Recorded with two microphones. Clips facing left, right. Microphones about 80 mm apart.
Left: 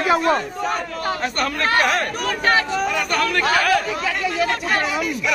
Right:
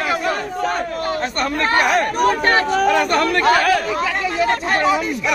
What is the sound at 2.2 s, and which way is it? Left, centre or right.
Speech, right.